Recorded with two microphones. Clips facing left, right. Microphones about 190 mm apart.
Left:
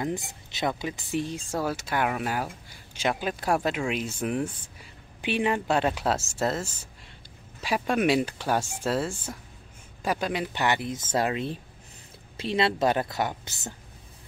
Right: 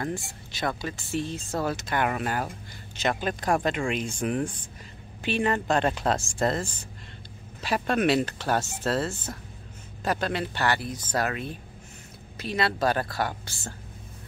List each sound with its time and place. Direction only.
0.0 s speech: 20° left (ahead or behind)